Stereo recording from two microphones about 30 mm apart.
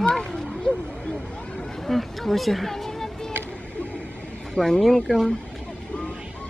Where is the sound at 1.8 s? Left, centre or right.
Centre.